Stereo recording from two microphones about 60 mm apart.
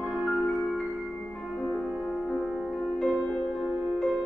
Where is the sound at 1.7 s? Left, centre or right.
Centre.